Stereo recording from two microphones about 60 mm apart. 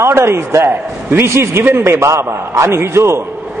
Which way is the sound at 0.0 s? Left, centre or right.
Right.